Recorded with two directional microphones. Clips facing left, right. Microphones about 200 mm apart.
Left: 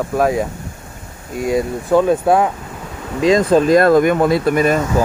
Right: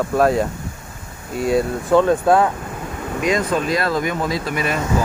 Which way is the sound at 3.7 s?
50° left (ahead or behind).